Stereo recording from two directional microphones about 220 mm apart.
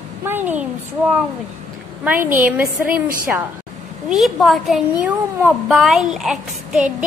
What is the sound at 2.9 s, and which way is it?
Speech, 40° right (ahead or behind).